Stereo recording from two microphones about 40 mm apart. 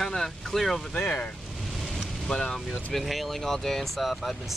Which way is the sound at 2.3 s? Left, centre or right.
Centre.